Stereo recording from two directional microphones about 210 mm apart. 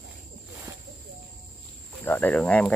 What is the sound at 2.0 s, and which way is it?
Speech, 10° left (ahead or behind).